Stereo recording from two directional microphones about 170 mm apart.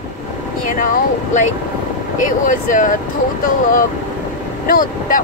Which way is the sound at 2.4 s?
50° left (ahead or behind).